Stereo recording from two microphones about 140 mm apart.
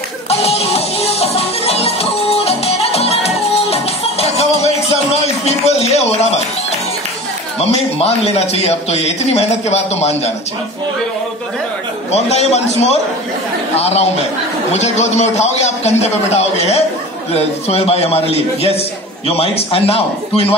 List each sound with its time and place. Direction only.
0.3 s music: 45° left (ahead or behind)
7.6 s a man's voice: 50° left (ahead or behind)
12.1 s a man's voice: 50° left (ahead or behind)